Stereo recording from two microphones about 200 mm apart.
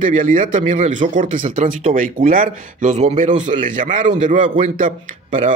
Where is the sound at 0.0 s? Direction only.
40° right (ahead or behind).